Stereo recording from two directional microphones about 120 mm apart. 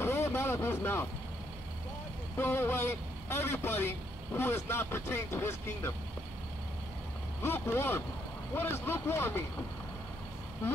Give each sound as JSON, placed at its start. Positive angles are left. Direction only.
{"t": 0.0, "sound": "a sound", "side_deg": 20}
{"t": 2.3, "sound": "a man's voice", "side_deg": 20}
{"t": 7.4, "sound": "a man's voice", "side_deg": 20}